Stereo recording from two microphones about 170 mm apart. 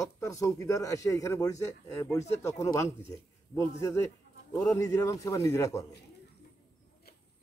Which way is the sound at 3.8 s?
15° left (ahead or behind).